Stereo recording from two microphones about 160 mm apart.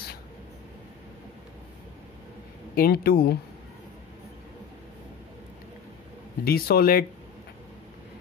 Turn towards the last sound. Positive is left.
turn(degrees=70)  # may be behind; listen again after turning